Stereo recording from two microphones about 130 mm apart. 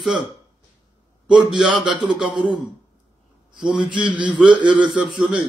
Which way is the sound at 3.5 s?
5° right (ahead or behind).